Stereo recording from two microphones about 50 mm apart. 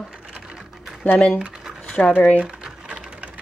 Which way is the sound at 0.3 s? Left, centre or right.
Centre.